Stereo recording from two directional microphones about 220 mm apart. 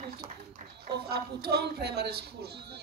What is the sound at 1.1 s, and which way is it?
Speech, 45° right (ahead or behind).